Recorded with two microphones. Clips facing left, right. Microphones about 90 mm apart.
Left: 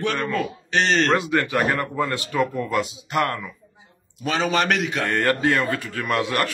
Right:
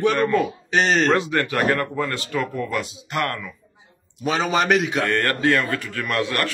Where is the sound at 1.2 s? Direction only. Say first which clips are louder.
Even; 5° left (ahead or behind).